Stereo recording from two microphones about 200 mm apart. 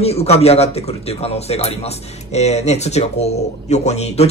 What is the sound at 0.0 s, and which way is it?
Speech, 30° left (ahead or behind).